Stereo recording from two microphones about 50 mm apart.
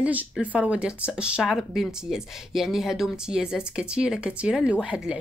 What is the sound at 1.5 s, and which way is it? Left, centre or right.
Speech, centre.